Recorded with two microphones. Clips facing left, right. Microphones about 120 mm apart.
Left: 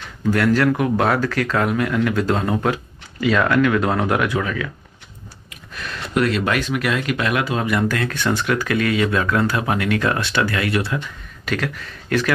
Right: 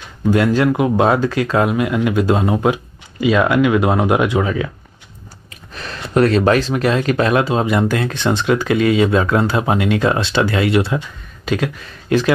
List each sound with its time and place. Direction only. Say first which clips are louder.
0.3 s speech: right 2 dB; 20° right (ahead or behind)
5.5 s speech: right 2 dB; 35° right (ahead or behind)